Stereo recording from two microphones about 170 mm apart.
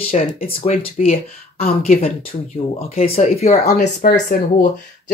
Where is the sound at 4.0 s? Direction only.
55° left (ahead or behind).